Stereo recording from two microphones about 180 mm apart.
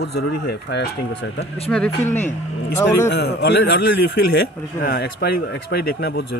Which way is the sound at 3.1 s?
70° left (ahead or behind).